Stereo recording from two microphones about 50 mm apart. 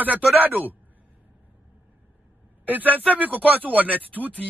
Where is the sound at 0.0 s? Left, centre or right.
Right.